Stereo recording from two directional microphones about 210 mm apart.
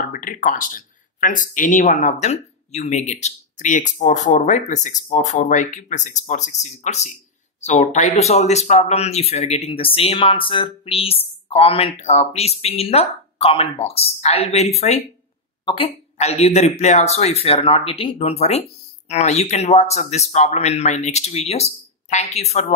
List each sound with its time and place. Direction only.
0.1 s speech: 40° left (ahead or behind)